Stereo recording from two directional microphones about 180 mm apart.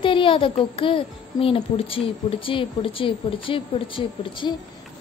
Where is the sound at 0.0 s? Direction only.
30° left (ahead or behind).